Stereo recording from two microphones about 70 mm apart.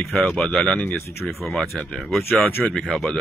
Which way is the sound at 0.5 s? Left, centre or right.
Centre.